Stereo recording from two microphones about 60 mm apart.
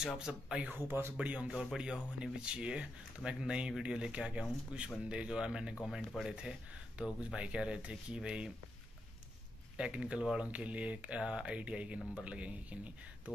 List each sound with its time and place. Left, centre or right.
0.0 s speech: centre
0.7 s speech: right
1.1 s speech: centre
5.9 s speech: centre
6.2 s speech: centre
9.8 s speech: centre